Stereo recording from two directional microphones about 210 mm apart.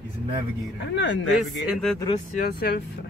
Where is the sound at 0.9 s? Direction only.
60° left (ahead or behind).